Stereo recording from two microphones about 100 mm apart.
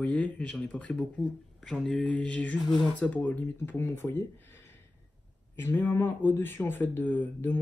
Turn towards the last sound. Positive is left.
turn(degrees=20)  # may be behind; listen again after turning